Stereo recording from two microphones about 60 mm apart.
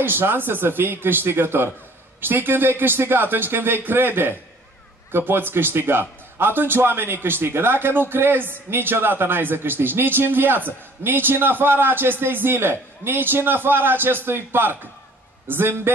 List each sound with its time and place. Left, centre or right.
0.0 s a man's voice: right